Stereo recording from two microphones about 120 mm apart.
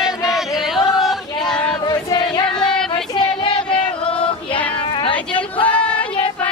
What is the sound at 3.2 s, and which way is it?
Music, 45° left (ahead or behind).